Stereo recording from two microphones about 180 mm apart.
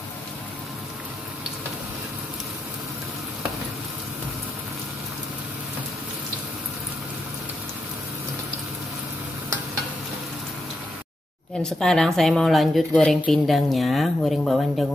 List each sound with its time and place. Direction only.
11.6 s a woman's voice: 5° left (ahead or behind)